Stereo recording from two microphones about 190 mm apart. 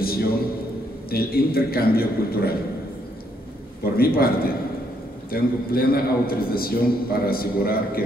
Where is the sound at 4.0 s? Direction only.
50° left (ahead or behind).